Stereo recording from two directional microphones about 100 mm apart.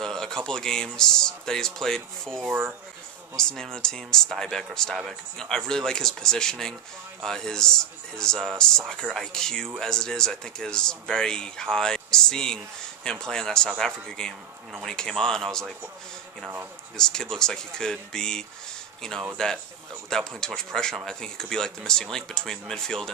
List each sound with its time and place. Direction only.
0.0 s speech: 5° left (ahead or behind)
2.4 s speech: 20° right (ahead or behind)
3.3 s speech: 5° left (ahead or behind)
16.9 s speech: 5° left (ahead or behind)